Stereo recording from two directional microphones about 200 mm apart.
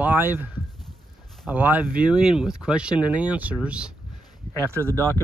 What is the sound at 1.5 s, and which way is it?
Speech, 10° right (ahead or behind).